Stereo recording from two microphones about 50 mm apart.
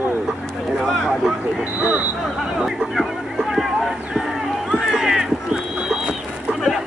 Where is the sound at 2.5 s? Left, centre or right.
Centre.